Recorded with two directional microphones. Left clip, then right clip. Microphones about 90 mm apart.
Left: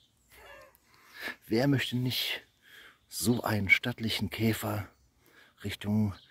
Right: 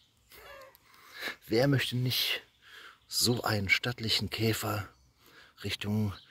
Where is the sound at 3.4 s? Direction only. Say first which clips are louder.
Left 2 dB; 50° left (ahead or behind).